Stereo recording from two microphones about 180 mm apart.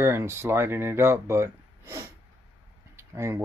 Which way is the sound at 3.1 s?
15° right (ahead or behind).